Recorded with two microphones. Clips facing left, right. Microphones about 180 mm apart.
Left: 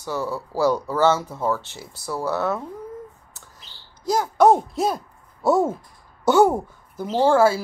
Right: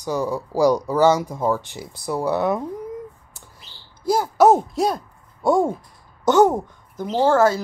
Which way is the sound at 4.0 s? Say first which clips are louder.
Right 1 dB; 10° right (ahead or behind).